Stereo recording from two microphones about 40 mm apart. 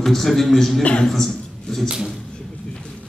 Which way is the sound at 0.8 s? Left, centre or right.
Left.